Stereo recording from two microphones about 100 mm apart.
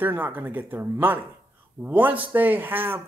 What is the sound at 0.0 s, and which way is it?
Speech, 20° right (ahead or behind).